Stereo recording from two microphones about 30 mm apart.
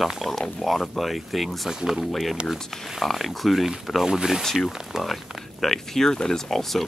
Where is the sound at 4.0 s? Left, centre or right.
Centre.